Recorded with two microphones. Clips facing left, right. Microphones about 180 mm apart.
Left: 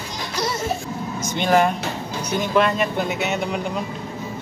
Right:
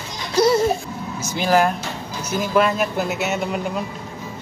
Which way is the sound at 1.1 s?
5° right (ahead or behind).